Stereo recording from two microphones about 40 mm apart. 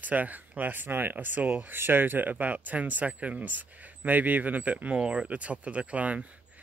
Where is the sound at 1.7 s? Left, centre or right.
Right.